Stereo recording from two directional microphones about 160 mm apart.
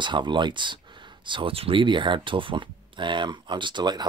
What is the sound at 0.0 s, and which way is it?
Speech, 30° right (ahead or behind).